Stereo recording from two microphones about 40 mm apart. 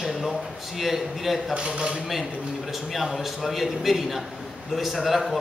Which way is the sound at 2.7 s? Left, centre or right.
Centre.